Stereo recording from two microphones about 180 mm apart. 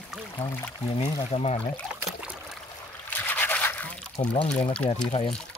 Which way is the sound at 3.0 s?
10° left (ahead or behind).